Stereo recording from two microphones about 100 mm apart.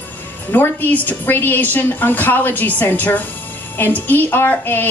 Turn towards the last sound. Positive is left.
turn(degrees=20)  # may be behind; listen again after turning